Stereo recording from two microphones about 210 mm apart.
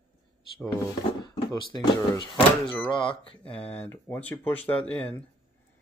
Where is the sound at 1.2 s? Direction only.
20° left (ahead or behind).